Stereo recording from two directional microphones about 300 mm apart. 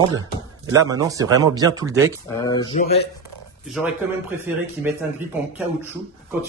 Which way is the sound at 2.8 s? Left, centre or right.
Left.